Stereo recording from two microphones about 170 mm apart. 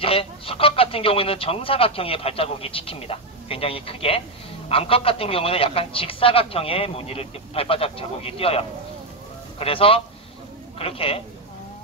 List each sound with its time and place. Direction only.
0.0 s speech: 35° left (ahead or behind)